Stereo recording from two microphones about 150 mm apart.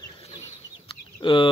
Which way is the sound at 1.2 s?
35° left (ahead or behind).